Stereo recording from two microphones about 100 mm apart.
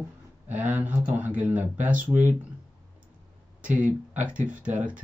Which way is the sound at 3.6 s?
15° right (ahead or behind).